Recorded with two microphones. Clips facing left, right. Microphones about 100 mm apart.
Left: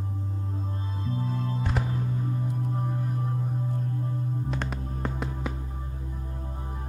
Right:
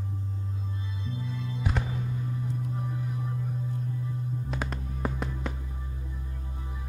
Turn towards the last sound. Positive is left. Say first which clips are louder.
# left 1 dB
turn(degrees=0)  # may be behind; listen again after turning